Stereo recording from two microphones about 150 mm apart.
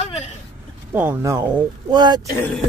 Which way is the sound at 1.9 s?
30° right (ahead or behind).